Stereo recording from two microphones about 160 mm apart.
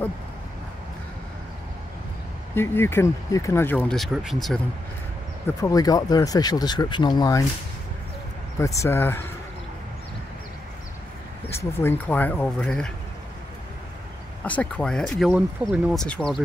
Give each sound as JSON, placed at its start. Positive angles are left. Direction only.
{"t": 2.5, "sound": "speech", "side_deg": 15}
{"t": 5.6, "sound": "speech", "side_deg": 25}
{"t": 8.5, "sound": "speech", "side_deg": 20}
{"t": 11.5, "sound": "speech", "side_deg": 15}
{"t": 14.4, "sound": "speech", "side_deg": 10}